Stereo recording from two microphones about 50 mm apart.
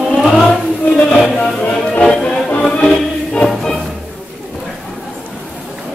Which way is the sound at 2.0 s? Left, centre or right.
Centre.